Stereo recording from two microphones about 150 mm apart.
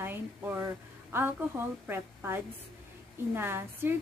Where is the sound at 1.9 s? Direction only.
15° right (ahead or behind).